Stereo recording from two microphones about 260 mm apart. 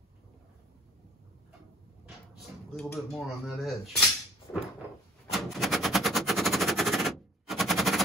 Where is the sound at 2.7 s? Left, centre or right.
Centre.